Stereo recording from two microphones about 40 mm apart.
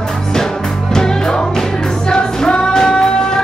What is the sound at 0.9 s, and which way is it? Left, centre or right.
Music, centre.